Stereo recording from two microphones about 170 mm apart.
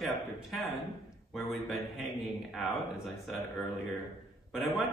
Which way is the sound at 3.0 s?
Centre (ahead or behind).